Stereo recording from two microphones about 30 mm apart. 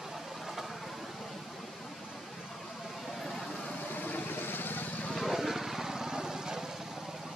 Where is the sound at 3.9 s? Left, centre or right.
Left.